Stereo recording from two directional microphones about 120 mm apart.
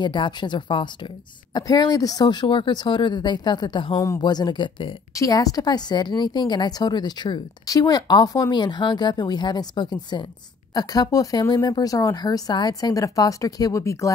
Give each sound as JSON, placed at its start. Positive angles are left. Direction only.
{"t": 0.0, "sound": "a woman's voice", "side_deg": 40}
{"t": 3.9, "sound": "a woman's voice", "side_deg": 25}
{"t": 5.1, "sound": "a woman's voice", "side_deg": 30}